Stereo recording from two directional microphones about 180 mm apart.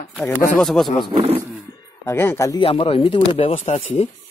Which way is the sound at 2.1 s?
15° left (ahead or behind).